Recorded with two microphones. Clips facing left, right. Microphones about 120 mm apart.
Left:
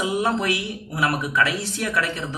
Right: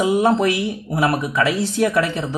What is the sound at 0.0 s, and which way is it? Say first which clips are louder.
Speech: right 7 dB; 30° right (ahead or behind).